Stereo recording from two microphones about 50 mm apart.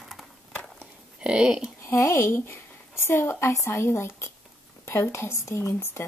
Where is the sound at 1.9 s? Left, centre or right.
Left.